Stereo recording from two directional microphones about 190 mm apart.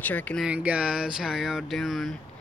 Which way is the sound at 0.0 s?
10° left (ahead or behind).